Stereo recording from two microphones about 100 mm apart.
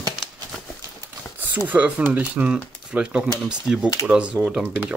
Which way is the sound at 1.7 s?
15° right (ahead or behind).